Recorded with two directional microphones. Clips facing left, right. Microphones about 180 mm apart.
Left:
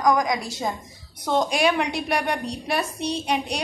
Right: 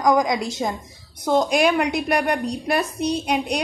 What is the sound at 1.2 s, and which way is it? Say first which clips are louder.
A woman's voice: right 3 dB; 5° right (ahead or behind).